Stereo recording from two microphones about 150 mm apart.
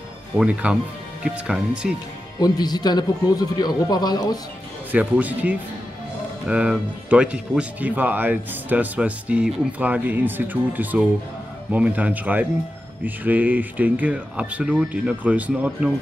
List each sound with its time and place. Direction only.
0.4 s speech: 10° right (ahead or behind)
2.4 s a man's voice: 25° left (ahead or behind)
4.9 s speech: 10° right (ahead or behind)